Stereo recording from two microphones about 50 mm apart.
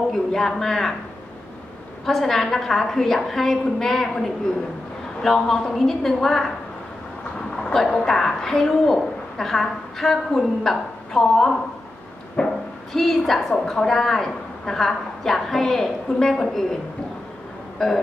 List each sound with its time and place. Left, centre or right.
0.3 s a woman's voice: centre
2.0 s a woman's voice: centre
7.7 s a woman's voice: centre
12.4 s speech: left
12.9 s a woman's voice: centre
17.7 s a sound: centre